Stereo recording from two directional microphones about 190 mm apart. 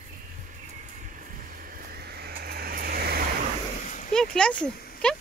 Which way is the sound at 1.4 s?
50° right (ahead or behind).